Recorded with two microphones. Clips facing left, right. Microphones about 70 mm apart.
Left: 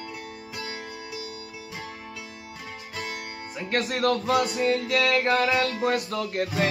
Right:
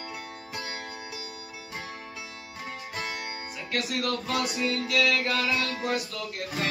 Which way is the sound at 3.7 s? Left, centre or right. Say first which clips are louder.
Left 6 dB; left.